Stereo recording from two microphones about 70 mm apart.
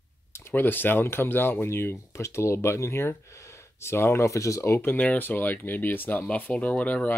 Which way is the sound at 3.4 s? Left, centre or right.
Left.